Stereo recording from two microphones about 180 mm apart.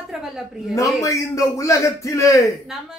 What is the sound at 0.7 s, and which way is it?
A man's voice, 15° left (ahead or behind).